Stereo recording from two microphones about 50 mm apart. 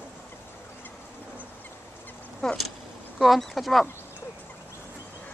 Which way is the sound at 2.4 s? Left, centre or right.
Centre.